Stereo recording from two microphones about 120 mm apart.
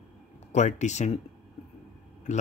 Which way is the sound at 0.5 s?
75° left (ahead or behind).